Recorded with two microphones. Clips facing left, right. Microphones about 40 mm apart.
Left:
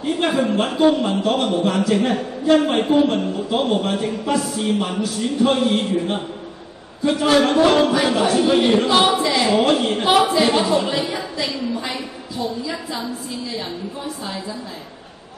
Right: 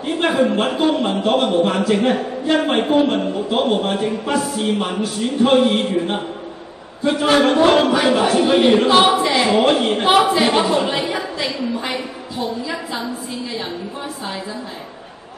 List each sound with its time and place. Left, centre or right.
0.0 s a man's voice: right
2.6 s a man's voice: right
9.5 s a man's voice: right